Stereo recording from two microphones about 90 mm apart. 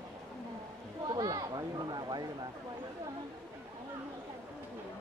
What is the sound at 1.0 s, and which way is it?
Speech, 45° right (ahead or behind).